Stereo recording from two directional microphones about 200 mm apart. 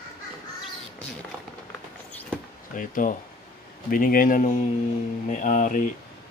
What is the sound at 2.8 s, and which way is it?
A man's voice, 40° left (ahead or behind).